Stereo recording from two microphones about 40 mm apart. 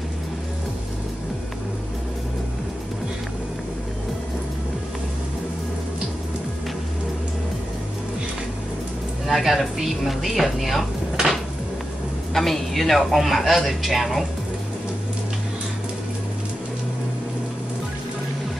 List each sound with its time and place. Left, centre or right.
9.3 s speech: centre
12.4 s speech: centre